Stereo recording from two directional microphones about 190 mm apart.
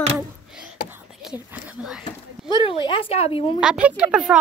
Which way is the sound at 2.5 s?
25° left (ahead or behind).